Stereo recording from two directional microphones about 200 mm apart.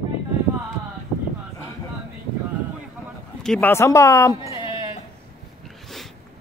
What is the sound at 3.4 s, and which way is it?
Speech, 5° left (ahead or behind).